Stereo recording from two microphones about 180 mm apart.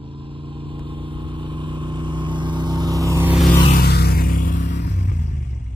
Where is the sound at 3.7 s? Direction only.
60° left (ahead or behind).